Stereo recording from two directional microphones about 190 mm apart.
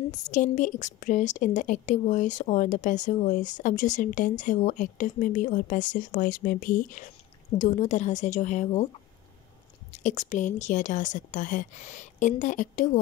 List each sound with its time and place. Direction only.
0.1 s a woman's voice: 40° left (ahead or behind)
9.9 s a woman's voice: 40° left (ahead or behind)